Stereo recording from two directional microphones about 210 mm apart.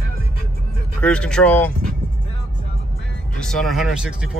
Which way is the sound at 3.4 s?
Centre (ahead or behind).